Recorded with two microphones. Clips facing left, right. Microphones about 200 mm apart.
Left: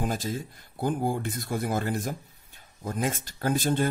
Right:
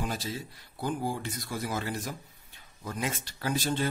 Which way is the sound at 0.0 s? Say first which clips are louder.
Left 4 dB; 50° left (ahead or behind).